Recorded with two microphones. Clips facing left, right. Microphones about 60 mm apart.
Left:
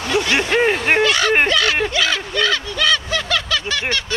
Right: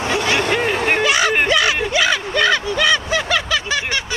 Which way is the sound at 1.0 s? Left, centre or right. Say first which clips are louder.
Even; centre.